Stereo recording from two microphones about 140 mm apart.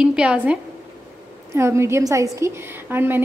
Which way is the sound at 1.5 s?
20° right (ahead or behind).